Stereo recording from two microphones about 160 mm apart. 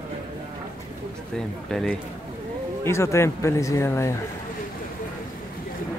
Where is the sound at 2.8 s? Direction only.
15° left (ahead or behind).